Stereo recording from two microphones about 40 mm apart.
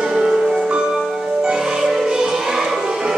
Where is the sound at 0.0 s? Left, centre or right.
Centre.